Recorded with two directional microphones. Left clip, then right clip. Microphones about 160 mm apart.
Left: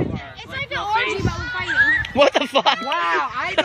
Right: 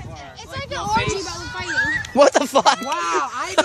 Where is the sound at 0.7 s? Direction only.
10° left (ahead or behind).